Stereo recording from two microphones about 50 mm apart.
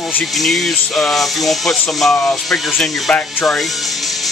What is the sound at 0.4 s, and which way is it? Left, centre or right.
Speech, centre.